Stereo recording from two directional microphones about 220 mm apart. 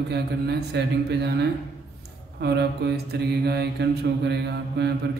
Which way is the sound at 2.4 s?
45° right (ahead or behind).